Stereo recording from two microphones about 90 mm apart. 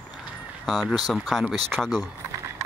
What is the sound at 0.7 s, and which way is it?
Speech, centre (ahead or behind).